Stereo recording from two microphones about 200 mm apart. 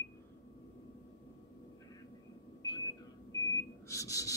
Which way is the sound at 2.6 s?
20° left (ahead or behind).